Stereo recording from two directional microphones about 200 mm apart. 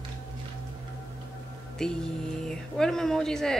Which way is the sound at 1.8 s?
5° left (ahead or behind).